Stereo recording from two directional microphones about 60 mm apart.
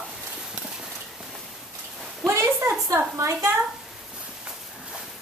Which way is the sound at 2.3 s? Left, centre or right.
Right.